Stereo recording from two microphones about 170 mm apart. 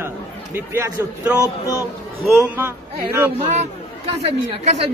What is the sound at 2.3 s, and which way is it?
Speech, centre (ahead or behind).